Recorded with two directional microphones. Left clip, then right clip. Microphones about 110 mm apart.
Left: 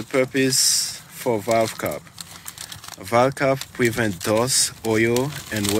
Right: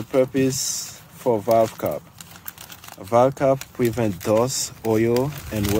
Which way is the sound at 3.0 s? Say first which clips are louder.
Right 1 dB; 20° right (ahead or behind).